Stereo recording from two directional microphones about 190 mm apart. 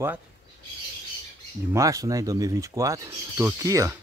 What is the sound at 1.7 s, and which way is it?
Speech, 15° right (ahead or behind).